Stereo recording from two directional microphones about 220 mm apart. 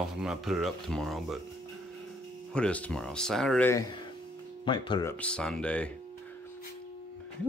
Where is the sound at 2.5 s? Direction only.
5° left (ahead or behind).